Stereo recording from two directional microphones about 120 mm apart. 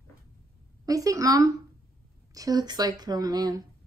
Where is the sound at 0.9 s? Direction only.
30° right (ahead or behind).